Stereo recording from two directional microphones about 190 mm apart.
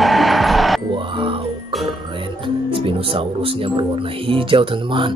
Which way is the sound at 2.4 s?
30° right (ahead or behind).